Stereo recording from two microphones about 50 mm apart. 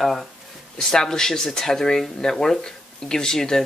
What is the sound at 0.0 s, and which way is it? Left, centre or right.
Speech, centre.